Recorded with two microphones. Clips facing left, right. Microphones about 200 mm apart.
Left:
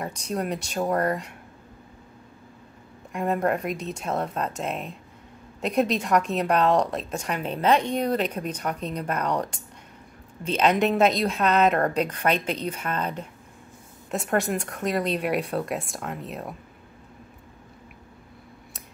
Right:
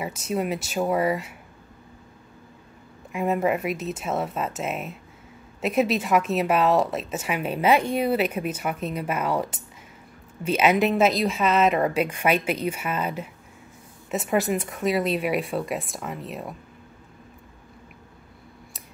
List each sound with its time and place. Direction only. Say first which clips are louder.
0.0 s a woman's voice: right 2 dB; 5° right (ahead or behind)
3.1 s a woman's voice: right 1 dB; 5° right (ahead or behind)